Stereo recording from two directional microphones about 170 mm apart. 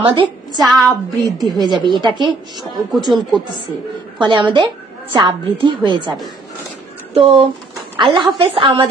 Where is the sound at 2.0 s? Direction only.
25° right (ahead or behind).